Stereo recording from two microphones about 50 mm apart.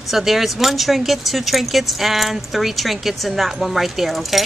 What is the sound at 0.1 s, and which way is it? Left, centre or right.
Speech, centre.